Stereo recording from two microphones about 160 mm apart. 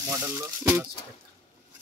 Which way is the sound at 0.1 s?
15° right (ahead or behind).